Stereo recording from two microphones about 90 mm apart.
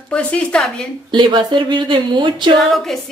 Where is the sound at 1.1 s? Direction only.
65° right (ahead or behind).